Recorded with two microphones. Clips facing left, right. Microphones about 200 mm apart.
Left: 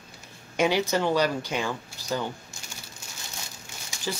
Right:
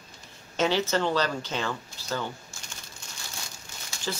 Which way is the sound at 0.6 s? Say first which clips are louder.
Left 1 dB; 10° left (ahead or behind).